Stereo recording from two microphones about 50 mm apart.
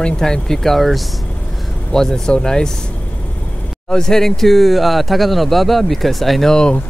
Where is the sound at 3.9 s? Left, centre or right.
Centre.